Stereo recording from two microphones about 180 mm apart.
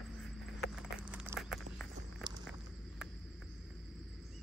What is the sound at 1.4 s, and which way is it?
Walk, centre (ahead or behind).